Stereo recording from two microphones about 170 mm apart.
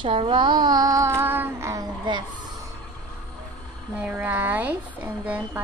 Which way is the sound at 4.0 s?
10° right (ahead or behind).